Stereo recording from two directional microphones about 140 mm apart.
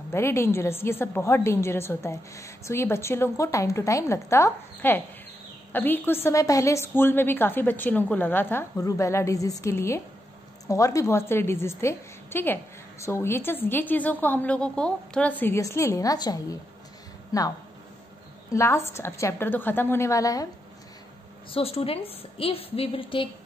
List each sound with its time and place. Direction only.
0.1 s a woman's voice: 20° left (ahead or behind)
18.5 s a woman's voice: 20° left (ahead or behind)
21.5 s a woman's voice: 45° left (ahead or behind)